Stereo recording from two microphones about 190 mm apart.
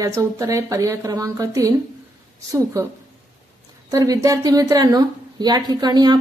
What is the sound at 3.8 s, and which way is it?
A woman's voice, 20° right (ahead or behind).